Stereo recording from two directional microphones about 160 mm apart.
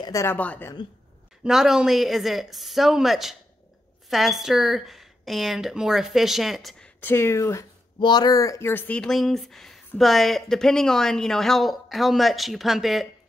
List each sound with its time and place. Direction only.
0.0 s speech: 20° left (ahead or behind)
1.4 s speech: centre (ahead or behind)
7.0 s speech: 15° left (ahead or behind); by 13.1 s centre (ahead or behind)